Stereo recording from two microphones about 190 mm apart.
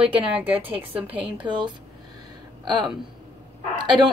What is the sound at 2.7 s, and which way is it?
Speech, 25° right (ahead or behind).